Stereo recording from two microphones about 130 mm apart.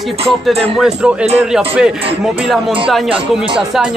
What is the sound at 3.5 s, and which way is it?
Speech, 5° right (ahead or behind).